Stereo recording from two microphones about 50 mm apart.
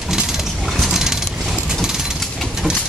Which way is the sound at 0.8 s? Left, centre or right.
Centre.